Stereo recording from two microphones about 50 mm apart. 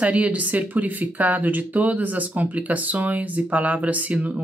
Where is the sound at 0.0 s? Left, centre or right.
Right.